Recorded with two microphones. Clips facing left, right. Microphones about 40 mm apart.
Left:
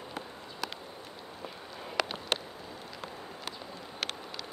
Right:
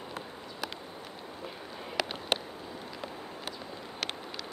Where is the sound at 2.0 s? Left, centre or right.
Centre.